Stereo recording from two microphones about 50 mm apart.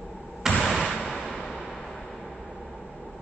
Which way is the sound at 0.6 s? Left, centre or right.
Centre.